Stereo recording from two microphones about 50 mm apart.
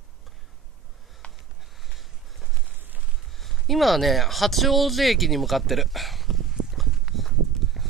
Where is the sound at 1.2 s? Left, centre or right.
Left.